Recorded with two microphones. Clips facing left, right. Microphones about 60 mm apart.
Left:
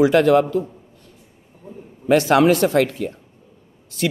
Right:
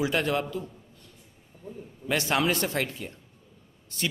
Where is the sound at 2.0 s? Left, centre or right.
Left.